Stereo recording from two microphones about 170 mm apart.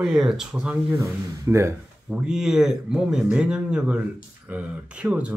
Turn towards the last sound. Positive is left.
turn(degrees=-5)  # may be behind; listen again after turning